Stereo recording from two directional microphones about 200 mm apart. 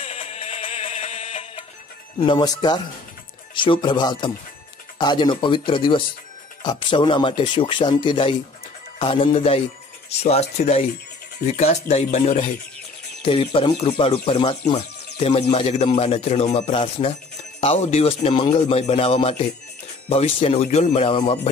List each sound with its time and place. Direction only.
0.0 s music: 30° left (ahead or behind)
2.1 s speech: 20° left (ahead or behind)